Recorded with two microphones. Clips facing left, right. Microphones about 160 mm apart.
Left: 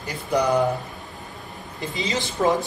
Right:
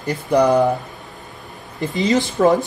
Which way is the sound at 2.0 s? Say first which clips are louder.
Right 8 dB; 45° right (ahead or behind).